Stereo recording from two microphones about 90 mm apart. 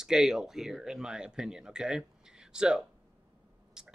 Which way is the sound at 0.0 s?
5° right (ahead or behind).